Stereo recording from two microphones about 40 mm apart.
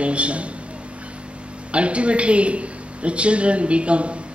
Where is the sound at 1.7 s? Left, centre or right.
Right.